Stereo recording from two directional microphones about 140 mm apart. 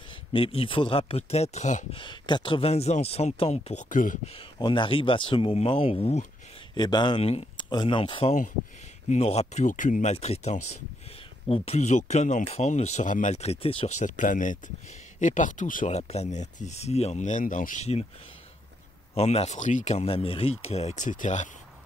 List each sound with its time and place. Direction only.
0.3 s speech: 40° left (ahead or behind); by 1.9 s 60° left (ahead or behind)
1.9 s speech: 35° left (ahead or behind)
2.7 s speech: 50° left (ahead or behind)
3.9 s speech: 70° left (ahead or behind)
4.4 s speech: 35° left (ahead or behind)
6.7 s speech: 30° left (ahead or behind); by 10.1 s 65° left (ahead or behind)
10.1 s speech: 50° left (ahead or behind)
13.9 s speech: 65° left (ahead or behind)
19.1 s speech: 50° left (ahead or behind)